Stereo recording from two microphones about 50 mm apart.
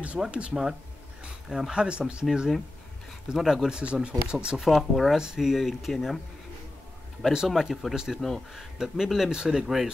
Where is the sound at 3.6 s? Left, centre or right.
Centre.